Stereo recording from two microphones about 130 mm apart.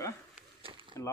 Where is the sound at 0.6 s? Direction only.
40° right (ahead or behind).